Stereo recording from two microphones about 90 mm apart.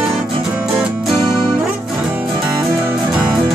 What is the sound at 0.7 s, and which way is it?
Music, centre (ahead or behind).